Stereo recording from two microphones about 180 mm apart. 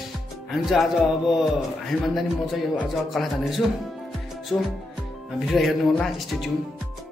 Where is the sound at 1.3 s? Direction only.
5° right (ahead or behind).